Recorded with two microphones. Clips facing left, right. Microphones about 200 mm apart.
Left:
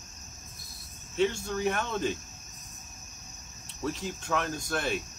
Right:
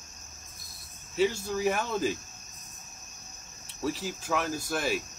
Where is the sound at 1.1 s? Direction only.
5° right (ahead or behind).